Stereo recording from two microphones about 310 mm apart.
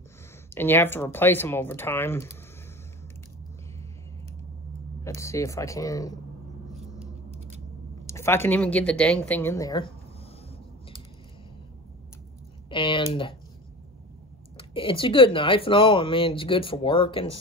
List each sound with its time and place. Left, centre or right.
0.6 s speech: centre
5.0 s speech: centre
8.1 s speech: centre
12.6 s speech: centre
14.6 s speech: centre